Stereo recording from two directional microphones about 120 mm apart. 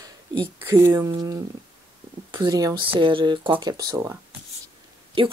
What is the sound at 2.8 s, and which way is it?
Speech, 45° right (ahead or behind).